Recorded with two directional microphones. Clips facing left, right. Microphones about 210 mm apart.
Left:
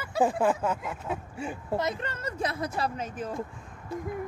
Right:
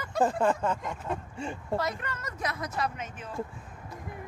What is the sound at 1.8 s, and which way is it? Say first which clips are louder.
A woman's voice: left 2 dB; 25° left (ahead or behind).